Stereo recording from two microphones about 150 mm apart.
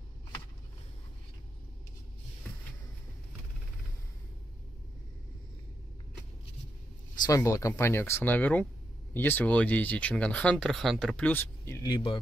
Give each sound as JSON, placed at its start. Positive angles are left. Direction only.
{"t": 7.2, "sound": "speech", "side_deg": 20}
{"t": 11.9, "sound": "a man's voice", "side_deg": 30}